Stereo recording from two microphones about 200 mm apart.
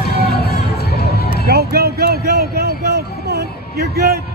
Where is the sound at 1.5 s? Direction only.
50° right (ahead or behind).